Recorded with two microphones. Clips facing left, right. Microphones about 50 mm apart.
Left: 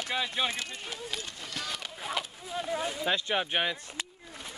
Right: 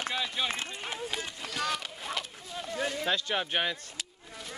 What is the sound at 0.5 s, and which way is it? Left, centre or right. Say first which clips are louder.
Speech: right 2 dB; right.